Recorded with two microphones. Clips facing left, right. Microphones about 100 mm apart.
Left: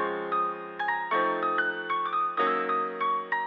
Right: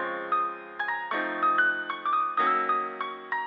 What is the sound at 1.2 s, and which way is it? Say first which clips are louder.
Music: right 3 dB; 20° left (ahead or behind).